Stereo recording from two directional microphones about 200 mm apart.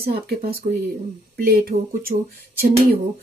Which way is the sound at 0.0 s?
50° right (ahead or behind).